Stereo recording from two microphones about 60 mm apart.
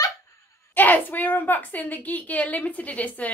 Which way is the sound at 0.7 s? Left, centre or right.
Left.